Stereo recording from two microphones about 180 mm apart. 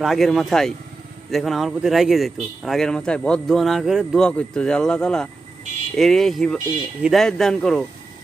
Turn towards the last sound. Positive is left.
turn(degrees=0)  # may be behind; listen again after turning